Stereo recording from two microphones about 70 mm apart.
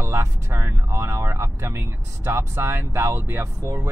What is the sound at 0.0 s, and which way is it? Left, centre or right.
Speech, right.